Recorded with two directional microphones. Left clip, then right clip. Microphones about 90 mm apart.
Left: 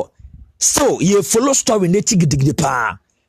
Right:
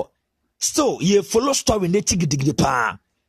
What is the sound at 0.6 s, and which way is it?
Speech, 40° left (ahead or behind).